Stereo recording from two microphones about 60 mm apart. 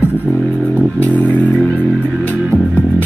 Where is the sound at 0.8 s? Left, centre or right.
Left.